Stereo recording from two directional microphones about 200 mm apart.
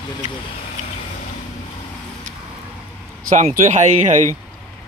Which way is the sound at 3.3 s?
40° right (ahead or behind).